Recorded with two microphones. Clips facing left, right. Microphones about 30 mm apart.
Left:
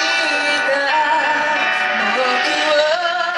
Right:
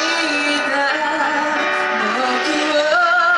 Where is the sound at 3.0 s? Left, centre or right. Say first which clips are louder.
Right 4 dB; centre.